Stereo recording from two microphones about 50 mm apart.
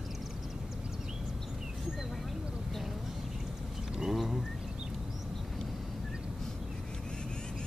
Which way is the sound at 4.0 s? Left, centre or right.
Centre.